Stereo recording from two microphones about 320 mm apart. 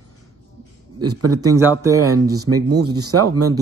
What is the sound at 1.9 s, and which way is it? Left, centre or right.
Speech, right.